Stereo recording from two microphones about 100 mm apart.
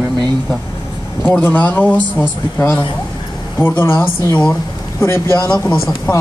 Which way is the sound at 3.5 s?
20° left (ahead or behind).